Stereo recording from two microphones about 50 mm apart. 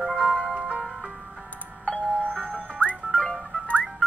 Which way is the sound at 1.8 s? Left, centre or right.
Centre.